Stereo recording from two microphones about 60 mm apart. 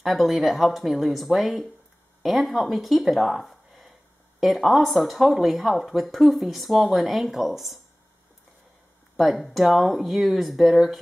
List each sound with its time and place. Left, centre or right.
0.0 s speech: centre
9.1 s speech: centre